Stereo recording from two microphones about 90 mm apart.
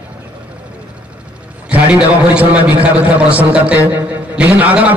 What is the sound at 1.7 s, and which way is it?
A man's voice, 15° right (ahead or behind).